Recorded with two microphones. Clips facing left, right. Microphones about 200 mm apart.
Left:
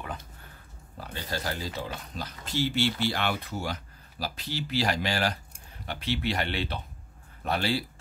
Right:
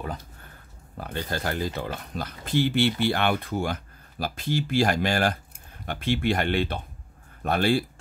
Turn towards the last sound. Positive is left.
turn(degrees=-50)  # may be behind; listen again after turning